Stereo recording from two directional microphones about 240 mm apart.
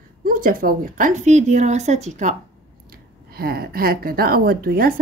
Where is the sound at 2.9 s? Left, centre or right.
Right.